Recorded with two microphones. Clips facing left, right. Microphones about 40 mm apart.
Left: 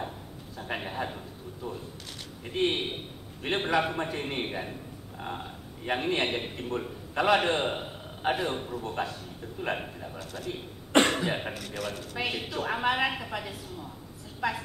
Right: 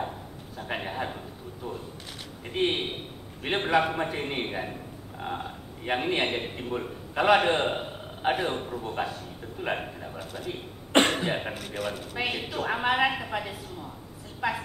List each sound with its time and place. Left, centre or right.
0.6 s a sound: centre
2.5 s a man's voice: centre
10.9 s cough: right
11.6 s a man's voice: centre